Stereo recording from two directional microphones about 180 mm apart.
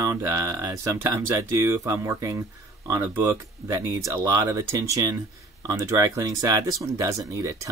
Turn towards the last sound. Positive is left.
turn(degrees=-15)  # may be behind; listen again after turning